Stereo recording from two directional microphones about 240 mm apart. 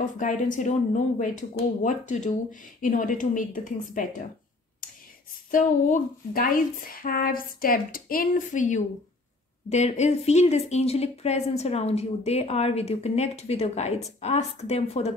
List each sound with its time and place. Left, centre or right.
0.0 s speech: left
5.5 s speech: left